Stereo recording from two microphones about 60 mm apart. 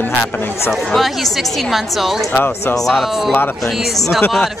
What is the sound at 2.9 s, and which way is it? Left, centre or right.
Speech, centre.